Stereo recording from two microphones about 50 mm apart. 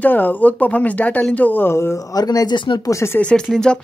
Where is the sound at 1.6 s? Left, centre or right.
Left.